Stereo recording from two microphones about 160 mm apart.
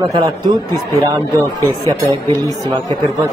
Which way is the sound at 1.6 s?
20° right (ahead or behind).